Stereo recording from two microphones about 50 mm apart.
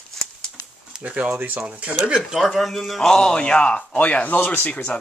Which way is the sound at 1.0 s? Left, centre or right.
Right.